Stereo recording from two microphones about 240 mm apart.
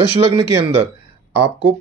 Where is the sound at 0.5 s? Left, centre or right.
Centre.